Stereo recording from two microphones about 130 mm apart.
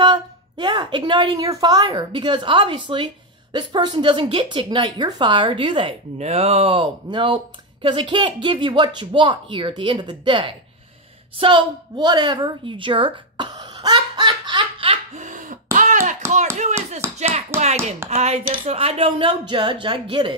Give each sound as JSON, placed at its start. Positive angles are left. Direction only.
{"t": 0.0, "sound": "a sound", "side_deg": -35}
{"t": 1.4, "sound": "speech", "side_deg": -30}
{"t": 6.1, "sound": "speech", "side_deg": -55}
{"t": 11.3, "sound": "a sound", "side_deg": -40}
{"t": 15.1, "sound": "throat clearing", "side_deg": -80}
{"t": 17.0, "sound": "clapping", "side_deg": -20}
{"t": 17.5, "sound": "speech", "side_deg": -20}
{"t": 18.1, "sound": "speech", "side_deg": -55}